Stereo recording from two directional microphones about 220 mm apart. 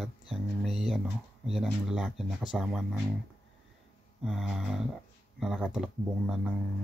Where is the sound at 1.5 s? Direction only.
Centre (ahead or behind).